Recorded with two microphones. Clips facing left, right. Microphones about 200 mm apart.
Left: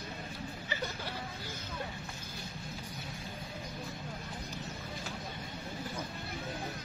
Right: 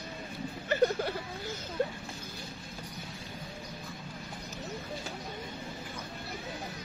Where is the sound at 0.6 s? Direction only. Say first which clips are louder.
Right 14 dB; 55° right (ahead or behind).